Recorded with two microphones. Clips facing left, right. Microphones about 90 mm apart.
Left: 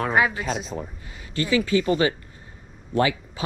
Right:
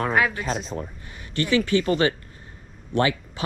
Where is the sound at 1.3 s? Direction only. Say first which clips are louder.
Right 1 dB; 30° left (ahead or behind).